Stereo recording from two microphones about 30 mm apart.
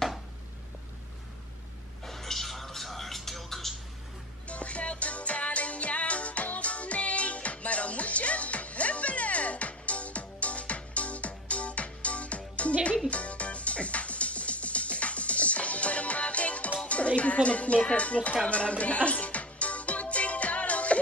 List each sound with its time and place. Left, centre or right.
2.0 s a sound: centre
4.5 s music: left
16.8 s speech: left
18.5 s music: left